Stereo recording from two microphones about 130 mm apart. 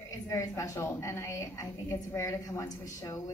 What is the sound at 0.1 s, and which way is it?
A woman's voice, 25° left (ahead or behind).